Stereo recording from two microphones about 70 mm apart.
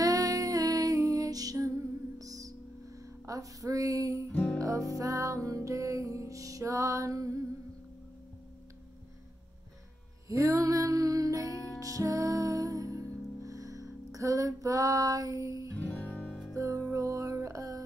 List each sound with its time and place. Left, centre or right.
0.0 s music: right
3.3 s a sound: right
4.3 s music: left
4.6 s music: right
10.2 s music: right
15.8 s music: centre
16.5 s music: right